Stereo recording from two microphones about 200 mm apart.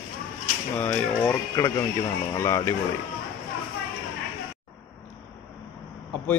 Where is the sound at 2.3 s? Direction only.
15° left (ahead or behind).